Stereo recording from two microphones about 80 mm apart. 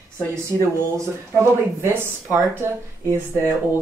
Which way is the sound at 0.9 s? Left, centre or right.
Right.